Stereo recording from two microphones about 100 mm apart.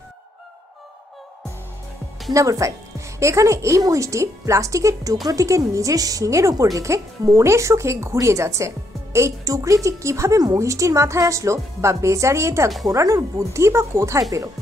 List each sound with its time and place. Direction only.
2.3 s speech: 35° right (ahead or behind)